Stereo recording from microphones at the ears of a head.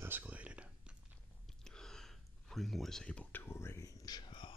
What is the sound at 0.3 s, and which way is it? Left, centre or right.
Whispering, centre.